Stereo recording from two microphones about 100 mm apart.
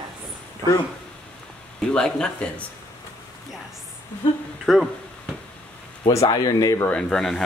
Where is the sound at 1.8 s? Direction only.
10° left (ahead or behind).